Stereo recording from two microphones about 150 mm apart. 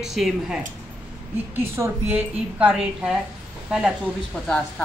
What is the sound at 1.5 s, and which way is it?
A woman's voice, 15° right (ahead or behind).